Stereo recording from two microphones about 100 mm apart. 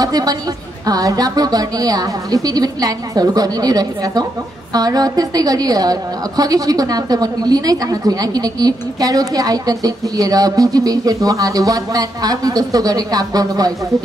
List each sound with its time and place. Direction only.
0.0 s a woman's voice: 40° right (ahead or behind)